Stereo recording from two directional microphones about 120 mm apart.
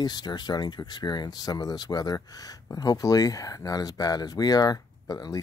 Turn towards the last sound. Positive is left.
turn(degrees=30)  # may be behind; listen again after turning